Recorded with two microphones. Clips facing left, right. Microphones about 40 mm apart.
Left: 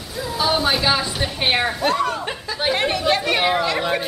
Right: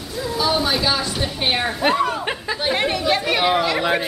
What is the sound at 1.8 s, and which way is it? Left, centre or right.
Speech, centre.